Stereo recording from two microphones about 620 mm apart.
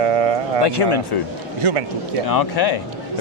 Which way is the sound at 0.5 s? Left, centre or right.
Left.